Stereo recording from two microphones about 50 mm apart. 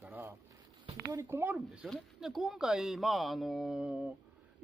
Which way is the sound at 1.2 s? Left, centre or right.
Right.